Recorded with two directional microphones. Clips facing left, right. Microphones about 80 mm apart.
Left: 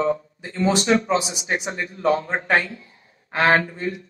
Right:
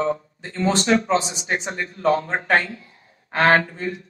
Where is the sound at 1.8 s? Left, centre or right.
Centre.